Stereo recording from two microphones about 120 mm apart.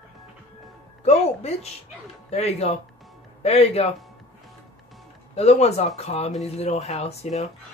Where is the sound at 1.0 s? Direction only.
60° left (ahead or behind).